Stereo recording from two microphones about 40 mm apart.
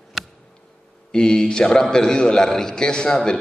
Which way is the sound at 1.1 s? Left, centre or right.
Left.